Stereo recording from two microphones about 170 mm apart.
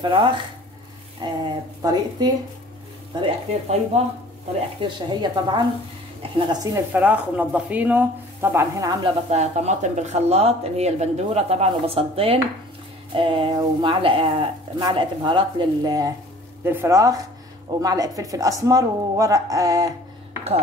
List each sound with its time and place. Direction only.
0.0 s speech: 30° right (ahead or behind)
3.2 s speech: 40° right (ahead or behind)
4.8 s speech: 25° right (ahead or behind)
6.9 s speech: 10° right (ahead or behind)
9.0 s speech: 40° right (ahead or behind); by 19.9 s 20° right (ahead or behind)